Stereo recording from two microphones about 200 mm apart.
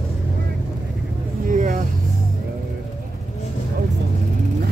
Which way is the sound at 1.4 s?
40° right (ahead or behind).